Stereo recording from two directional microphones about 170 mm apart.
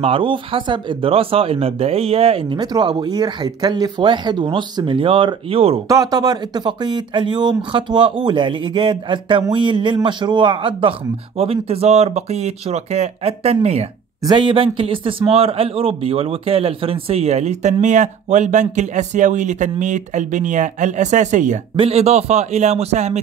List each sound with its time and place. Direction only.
0.0 s speech: 30° right (ahead or behind)
5.9 s a man's voice: 20° right (ahead or behind); by 23.1 s 40° right (ahead or behind)